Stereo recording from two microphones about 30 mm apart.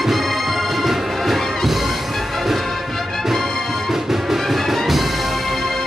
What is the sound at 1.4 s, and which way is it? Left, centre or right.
Music, centre.